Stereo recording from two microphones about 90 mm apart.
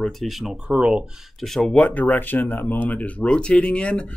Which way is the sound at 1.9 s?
20° left (ahead or behind).